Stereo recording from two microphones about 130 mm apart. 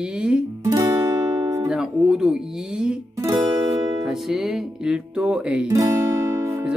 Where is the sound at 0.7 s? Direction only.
25° right (ahead or behind).